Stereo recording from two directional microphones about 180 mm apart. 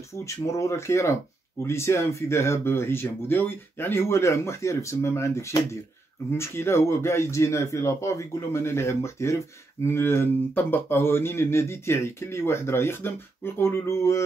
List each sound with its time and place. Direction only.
0.1 s speech: 15° left (ahead or behind)